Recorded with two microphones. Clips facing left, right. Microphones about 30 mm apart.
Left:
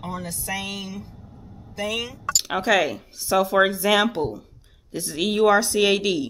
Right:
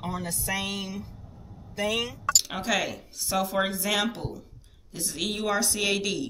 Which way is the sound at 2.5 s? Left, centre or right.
Centre.